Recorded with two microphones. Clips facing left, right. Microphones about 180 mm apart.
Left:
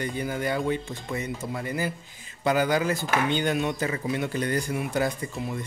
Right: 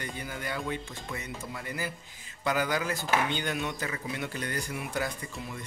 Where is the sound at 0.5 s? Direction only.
30° left (ahead or behind).